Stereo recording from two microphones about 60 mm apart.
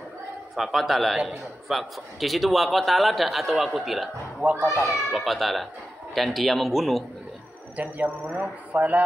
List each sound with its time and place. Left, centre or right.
0.6 s a man's voice: centre
4.4 s speech: right
4.8 s a man's voice: centre
7.7 s speech: right